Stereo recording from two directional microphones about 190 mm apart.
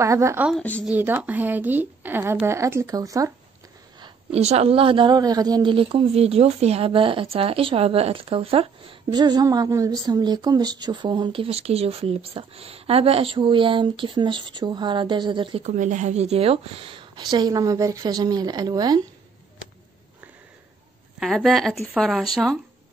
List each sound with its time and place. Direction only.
0.0 s a woman's voice: 15° right (ahead or behind)
0.5 s speech: 5° left (ahead or behind)
0.8 s a woman's voice: 10° right (ahead or behind)
4.0 s a woman's voice: 30° right (ahead or behind)
21.2 s speech: centre (ahead or behind)